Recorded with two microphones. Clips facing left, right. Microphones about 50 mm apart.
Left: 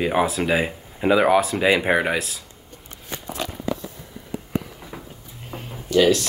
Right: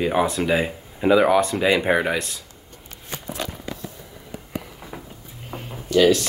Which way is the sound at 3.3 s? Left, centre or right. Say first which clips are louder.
Left 4 dB; left.